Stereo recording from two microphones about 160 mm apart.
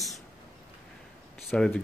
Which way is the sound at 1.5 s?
5° left (ahead or behind).